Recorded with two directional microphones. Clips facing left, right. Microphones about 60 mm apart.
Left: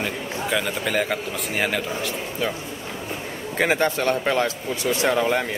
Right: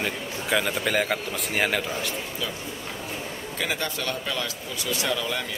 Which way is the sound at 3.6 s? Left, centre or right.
Left.